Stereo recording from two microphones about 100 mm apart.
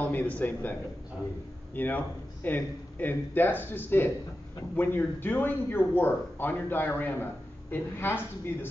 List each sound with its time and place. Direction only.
0.0 s a man's voice: 15° left (ahead or behind)
1.8 s speech: 15° left (ahead or behind)